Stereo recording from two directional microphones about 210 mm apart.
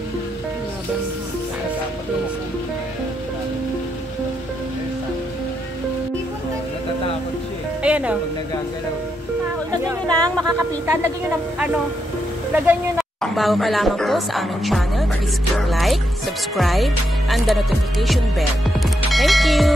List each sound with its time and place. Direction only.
7.8 s music: 5° right (ahead or behind)
9.7 s speech: 20° right (ahead or behind)
12.5 s speech: 10° right (ahead or behind)